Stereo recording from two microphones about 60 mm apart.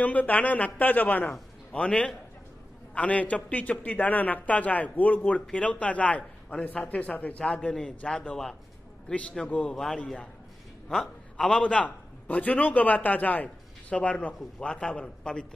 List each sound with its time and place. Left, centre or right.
0.0 s a man's voice: left
1.7 s a man's voice: centre
11.3 s a man's voice: centre